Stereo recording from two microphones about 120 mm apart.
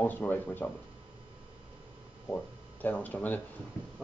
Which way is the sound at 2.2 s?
15° left (ahead or behind).